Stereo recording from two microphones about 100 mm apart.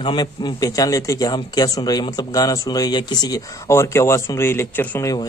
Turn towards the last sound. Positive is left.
turn(degrees=25)  # may be behind; listen again after turning